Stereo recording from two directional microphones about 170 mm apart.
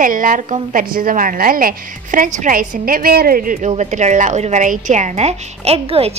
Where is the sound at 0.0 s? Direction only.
50° right (ahead or behind).